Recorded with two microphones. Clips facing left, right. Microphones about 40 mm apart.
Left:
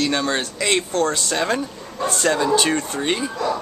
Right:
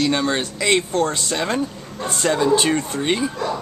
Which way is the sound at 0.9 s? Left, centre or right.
Right.